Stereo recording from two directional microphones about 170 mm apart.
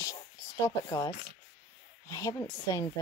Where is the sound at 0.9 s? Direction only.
20° left (ahead or behind).